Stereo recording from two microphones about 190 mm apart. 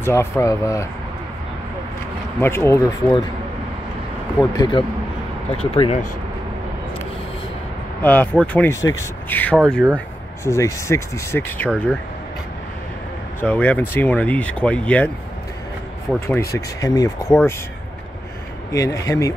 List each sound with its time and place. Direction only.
0.0 s speech: 15° left (ahead or behind)
2.4 s speech: 15° left (ahead or behind)
4.4 s speech: 20° left (ahead or behind)
8.0 s speech: 10° left (ahead or behind)
9.9 s speech: 15° left (ahead or behind)
13.4 s speech: 10° left (ahead or behind)
16.3 s speech: 15° left (ahead or behind)
18.7 s speech: 15° left (ahead or behind)